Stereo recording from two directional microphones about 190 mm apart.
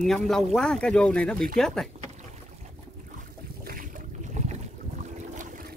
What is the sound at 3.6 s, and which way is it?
Boat, 45° right (ahead or behind).